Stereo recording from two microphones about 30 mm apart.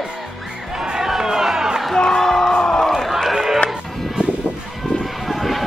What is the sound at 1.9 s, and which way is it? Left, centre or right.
Music, centre.